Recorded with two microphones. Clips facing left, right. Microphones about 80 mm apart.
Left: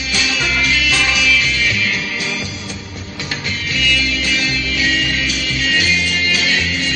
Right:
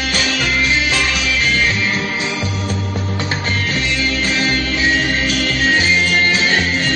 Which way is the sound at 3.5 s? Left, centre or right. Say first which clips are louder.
Left 2 dB; right.